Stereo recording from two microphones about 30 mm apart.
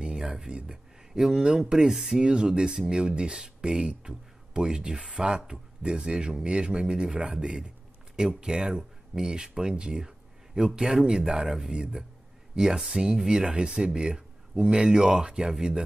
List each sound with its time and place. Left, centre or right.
0.3 s speech: right; by 2.2 s centre
2.2 s speech: right
11.1 s speech: right
11.4 s speech: centre
12.8 s speech: right